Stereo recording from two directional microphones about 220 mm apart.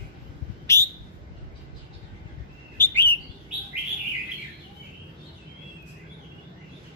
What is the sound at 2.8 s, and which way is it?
Bird, 10° left (ahead or behind).